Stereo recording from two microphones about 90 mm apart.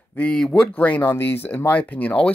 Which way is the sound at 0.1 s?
15° left (ahead or behind).